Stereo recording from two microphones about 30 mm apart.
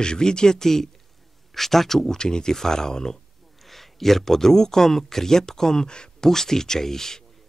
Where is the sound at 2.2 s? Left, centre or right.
Left.